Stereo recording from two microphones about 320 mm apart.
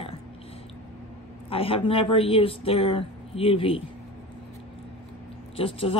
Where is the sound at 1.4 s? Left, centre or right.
Centre.